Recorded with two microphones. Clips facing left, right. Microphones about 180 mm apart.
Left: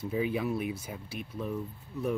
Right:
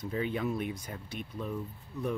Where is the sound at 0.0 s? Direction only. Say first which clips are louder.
Left 2 dB; 5° left (ahead or behind).